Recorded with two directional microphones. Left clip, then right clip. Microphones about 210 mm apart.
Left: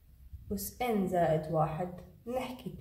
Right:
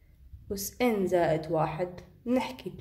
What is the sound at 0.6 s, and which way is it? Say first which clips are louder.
A woman's voice: right 5 dB; 50° right (ahead or behind).